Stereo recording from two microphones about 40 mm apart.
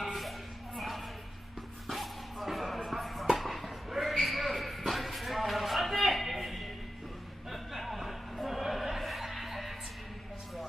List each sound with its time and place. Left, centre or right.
0.0 s music: centre